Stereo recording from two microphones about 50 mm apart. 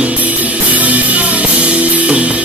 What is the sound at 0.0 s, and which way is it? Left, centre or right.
Music, right.